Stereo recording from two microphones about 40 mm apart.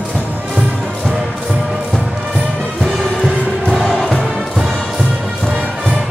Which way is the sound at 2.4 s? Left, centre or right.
Right.